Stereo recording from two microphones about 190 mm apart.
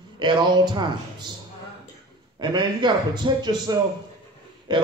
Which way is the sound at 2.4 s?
25° right (ahead or behind).